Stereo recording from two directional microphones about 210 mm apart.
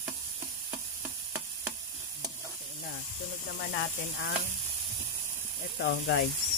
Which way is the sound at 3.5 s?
55° left (ahead or behind).